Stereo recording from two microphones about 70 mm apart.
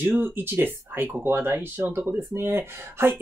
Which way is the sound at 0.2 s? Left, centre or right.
Right.